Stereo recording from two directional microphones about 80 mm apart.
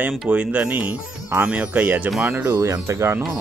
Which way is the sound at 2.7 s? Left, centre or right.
Right.